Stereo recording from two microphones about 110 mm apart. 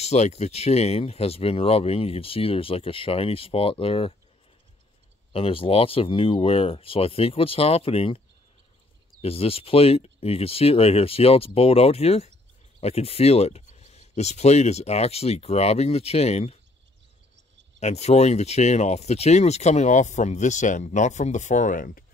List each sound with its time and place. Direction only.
0.0 s speech: 80° left; by 4.1 s 55° left (ahead or behind)
5.3 s speech: 55° left (ahead or behind)
9.2 s speech: 60° left (ahead or behind)
17.7 s speech: 85° left